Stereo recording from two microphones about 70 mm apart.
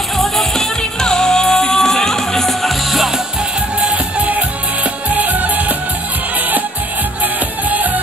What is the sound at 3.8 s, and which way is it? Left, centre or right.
Music, right.